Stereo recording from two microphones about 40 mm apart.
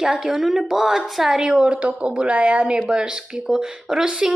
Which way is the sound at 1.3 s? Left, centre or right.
Centre.